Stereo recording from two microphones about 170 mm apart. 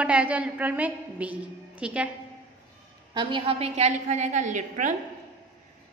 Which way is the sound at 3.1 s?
30° right (ahead or behind).